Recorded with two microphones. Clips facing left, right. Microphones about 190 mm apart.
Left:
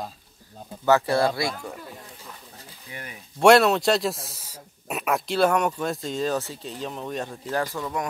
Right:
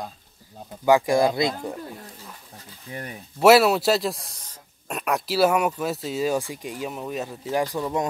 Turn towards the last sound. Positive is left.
turn(degrees=-20)  # may be behind; listen again after turning